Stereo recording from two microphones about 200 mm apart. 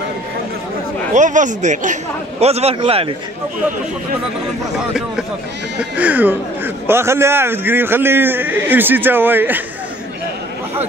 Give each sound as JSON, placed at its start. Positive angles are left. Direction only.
{"t": 1.1, "sound": "a man's voice", "side_deg": -40}
{"t": 5.8, "sound": "a man's voice", "side_deg": -5}